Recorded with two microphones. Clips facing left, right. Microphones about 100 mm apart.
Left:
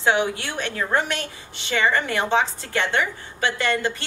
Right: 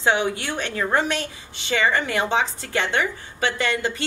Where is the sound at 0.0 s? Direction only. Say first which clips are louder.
Even; 20° right (ahead or behind).